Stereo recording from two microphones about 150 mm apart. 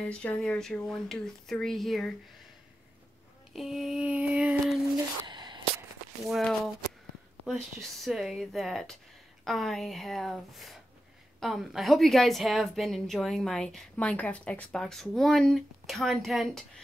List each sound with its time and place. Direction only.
0.0 s a woman's voice: 10° left (ahead or behind)
3.5 s a woman's voice: centre (ahead or behind)
5.2 s a sound: 30° right (ahead or behind)
6.2 s a woman's voice: centre (ahead or behind)